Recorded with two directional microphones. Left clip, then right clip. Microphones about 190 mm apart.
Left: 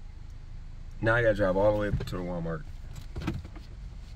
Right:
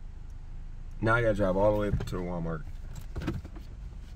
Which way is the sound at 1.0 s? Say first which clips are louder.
Left 2 dB; 10° right (ahead or behind).